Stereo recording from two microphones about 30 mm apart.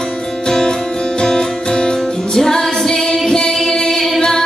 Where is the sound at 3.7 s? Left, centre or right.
Centre.